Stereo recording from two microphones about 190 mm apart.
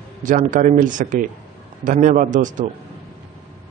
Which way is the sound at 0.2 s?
45° right (ahead or behind).